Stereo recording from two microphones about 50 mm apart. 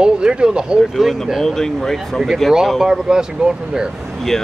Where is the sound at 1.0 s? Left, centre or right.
Centre.